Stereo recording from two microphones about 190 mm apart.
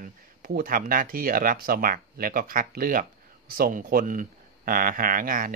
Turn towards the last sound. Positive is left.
turn(degrees=-45)  # may be behind; listen again after turning